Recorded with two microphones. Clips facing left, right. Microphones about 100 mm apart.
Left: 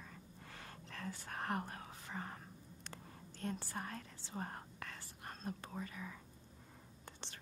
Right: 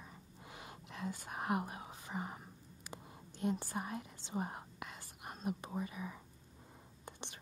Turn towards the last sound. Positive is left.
turn(degrees=-15)  # may be behind; listen again after turning